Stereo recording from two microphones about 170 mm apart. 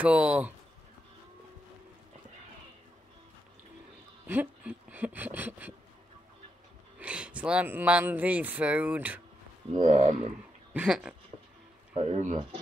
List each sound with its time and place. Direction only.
0.0 s speech: 5° right (ahead or behind)
4.3 s speech: 10° right (ahead or behind)
7.0 s speech: 5° right (ahead or behind)
9.8 s speech: 45° right (ahead or behind)
10.7 s speech: 5° right (ahead or behind)
11.9 s speech: 40° right (ahead or behind)